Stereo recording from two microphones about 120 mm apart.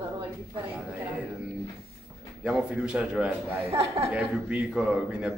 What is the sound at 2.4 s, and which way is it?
Speech, 5° right (ahead or behind).